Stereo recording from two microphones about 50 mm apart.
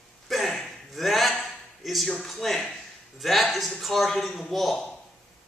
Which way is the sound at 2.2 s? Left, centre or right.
Centre.